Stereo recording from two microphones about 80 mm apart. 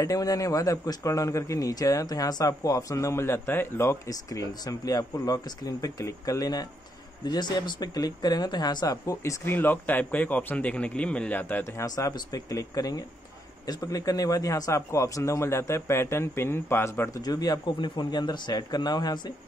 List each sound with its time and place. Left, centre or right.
0.0 s a man's voice: left
4.1 s a man's voice: left
7.2 s speech: left
11.8 s a man's voice: left
17.1 s a man's voice: left
17.7 s speech: left